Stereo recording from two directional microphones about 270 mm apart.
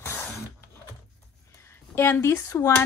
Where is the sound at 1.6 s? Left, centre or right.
Centre.